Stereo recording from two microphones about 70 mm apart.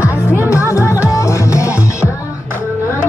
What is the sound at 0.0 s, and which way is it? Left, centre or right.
Music, left.